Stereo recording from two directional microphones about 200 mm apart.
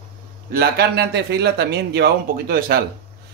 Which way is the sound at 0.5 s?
50° right (ahead or behind).